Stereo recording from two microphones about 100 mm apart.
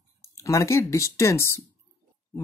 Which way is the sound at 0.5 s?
30° left (ahead or behind).